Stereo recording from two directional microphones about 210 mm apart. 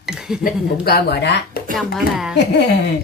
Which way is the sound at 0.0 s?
Centre (ahead or behind).